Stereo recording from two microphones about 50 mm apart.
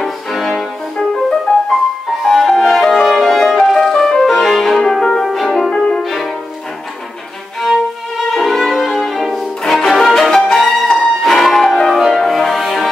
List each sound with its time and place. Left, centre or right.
0.3 s music: centre
2.2 s music: centre
8.3 s music: centre